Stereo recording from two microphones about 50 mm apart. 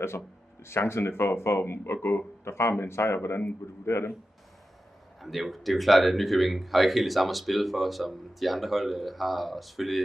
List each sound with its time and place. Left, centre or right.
0.7 s speech: left
5.2 s speech: centre